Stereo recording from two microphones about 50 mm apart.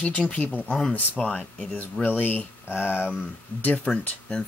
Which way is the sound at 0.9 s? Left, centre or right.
Left.